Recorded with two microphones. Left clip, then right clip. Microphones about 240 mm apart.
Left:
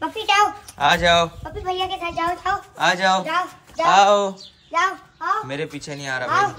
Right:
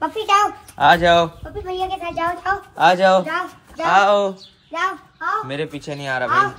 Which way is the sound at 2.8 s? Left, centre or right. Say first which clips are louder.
Right 5 dB; centre.